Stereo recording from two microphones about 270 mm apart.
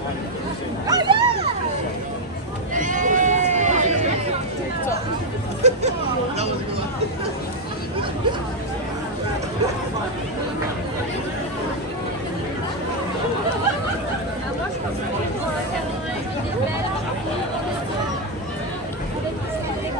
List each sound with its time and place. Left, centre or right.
0.8 s a sound: centre
2.7 s sheep: right
5.6 s hubbub: right